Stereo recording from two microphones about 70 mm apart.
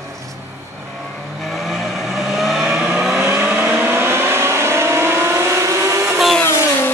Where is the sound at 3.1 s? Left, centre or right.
Right.